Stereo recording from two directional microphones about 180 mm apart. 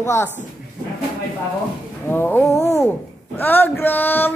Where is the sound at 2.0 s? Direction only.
10° left (ahead or behind).